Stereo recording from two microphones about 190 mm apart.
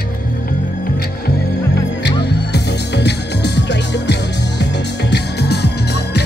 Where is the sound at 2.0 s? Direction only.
65° left (ahead or behind).